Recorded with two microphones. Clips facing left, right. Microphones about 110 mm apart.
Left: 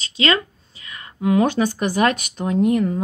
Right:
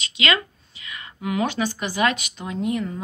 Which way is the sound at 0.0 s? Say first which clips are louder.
Left 3 dB; 35° left (ahead or behind).